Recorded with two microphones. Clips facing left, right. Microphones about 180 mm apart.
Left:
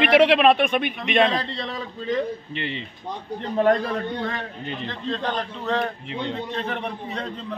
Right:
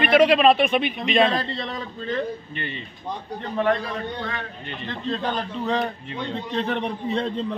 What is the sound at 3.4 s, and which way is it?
Speech, 40° left (ahead or behind).